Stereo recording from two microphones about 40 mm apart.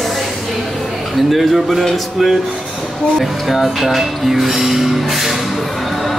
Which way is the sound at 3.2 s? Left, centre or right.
Centre.